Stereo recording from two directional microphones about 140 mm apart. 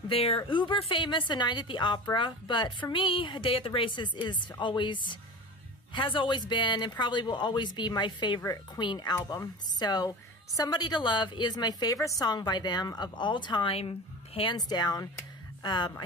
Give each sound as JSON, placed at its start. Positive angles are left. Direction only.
{"t": 0.1, "sound": "a woman's voice", "side_deg": 45}